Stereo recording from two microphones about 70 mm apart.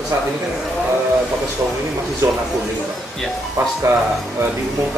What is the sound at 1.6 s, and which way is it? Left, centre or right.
Speech, right.